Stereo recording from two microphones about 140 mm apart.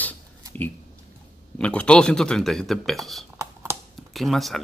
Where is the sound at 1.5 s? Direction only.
5° left (ahead or behind).